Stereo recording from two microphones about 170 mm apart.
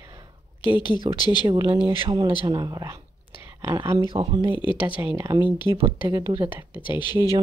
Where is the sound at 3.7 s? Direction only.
25° right (ahead or behind).